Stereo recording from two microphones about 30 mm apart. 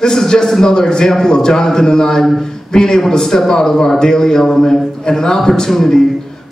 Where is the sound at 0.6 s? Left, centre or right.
Left.